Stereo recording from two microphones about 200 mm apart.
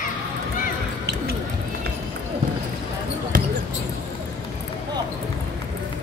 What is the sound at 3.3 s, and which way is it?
Basketball bounce, 45° right (ahead or behind).